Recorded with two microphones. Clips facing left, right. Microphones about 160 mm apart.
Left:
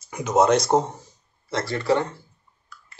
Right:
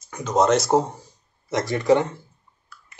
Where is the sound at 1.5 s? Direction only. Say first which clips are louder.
Right 3 dB; 15° right (ahead or behind).